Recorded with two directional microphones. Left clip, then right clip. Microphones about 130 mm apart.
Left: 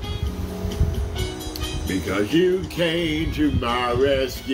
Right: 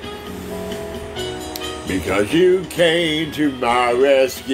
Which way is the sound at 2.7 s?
50° left (ahead or behind).